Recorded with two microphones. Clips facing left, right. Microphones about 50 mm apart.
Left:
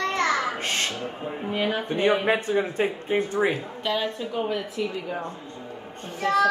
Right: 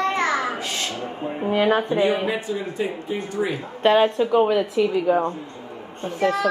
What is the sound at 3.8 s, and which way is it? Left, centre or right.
Speech, right.